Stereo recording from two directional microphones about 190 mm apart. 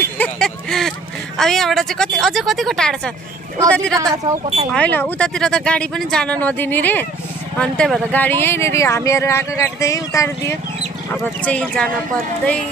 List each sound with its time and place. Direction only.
0.0 s a sound: 5° left (ahead or behind)
1.4 s a woman's voice: centre (ahead or behind)
4.1 s speech: 20° right (ahead or behind)
4.7 s a woman's voice: 5° left (ahead or behind)
11.4 s a woman's voice: 5° left (ahead or behind)